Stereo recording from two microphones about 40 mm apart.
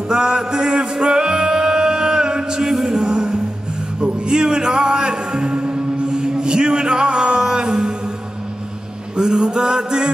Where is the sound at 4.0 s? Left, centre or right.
Right.